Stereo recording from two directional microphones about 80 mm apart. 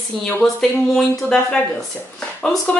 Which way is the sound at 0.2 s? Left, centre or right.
Centre.